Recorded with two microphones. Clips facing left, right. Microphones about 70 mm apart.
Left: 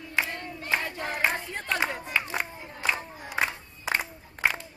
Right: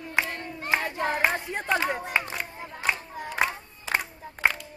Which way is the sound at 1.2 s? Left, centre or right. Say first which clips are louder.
Right 2 dB; centre.